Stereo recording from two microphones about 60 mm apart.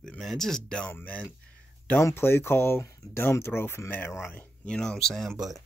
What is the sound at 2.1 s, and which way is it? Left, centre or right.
Speech, left.